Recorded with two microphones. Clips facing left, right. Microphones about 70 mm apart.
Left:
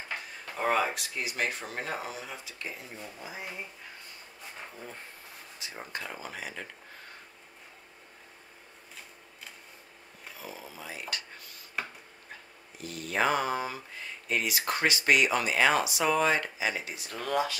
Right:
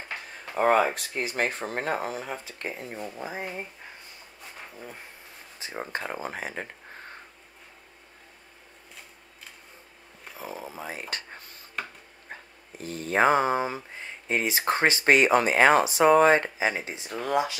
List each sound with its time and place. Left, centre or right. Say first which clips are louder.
0.6 s speech: right 6 dB; right
4.7 s speech: right 2 dB; centre
5.6 s speech: right 6 dB; right
10.3 s a sound: right 7 dB; right
11.8 s a sound: right 1 dB; centre
12.3 s speech: right 7 dB; right; by 17.6 s centre